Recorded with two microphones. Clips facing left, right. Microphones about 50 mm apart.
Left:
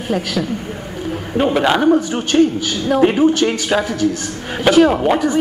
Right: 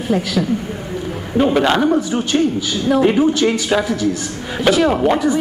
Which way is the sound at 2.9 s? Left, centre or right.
Left.